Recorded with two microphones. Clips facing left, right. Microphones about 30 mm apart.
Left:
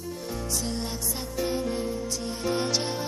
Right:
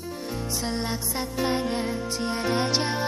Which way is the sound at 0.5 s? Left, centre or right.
Right.